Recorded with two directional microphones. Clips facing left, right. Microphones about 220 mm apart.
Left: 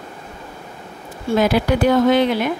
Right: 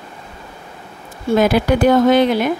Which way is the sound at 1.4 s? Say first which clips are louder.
Right 2 dB; 50° right (ahead or behind).